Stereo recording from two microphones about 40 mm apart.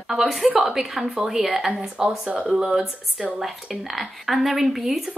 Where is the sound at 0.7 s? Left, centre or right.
Centre.